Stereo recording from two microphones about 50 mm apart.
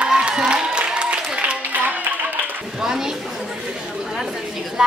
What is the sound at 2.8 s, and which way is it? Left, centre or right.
Speech, centre.